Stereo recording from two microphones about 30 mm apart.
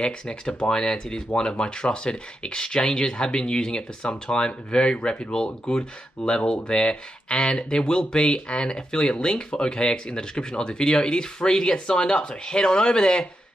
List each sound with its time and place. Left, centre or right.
0.0 s speech: left